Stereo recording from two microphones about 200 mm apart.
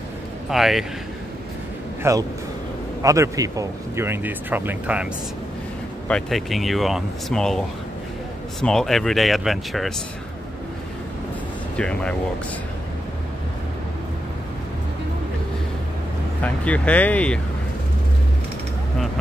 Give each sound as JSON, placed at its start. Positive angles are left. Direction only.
{"t": 0.5, "sound": "speech", "side_deg": 0}
{"t": 2.0, "sound": "speech", "side_deg": -15}
{"t": 6.0, "sound": "speech", "side_deg": 0}
{"t": 11.7, "sound": "speech", "side_deg": 5}
{"t": 16.4, "sound": "speech", "side_deg": 5}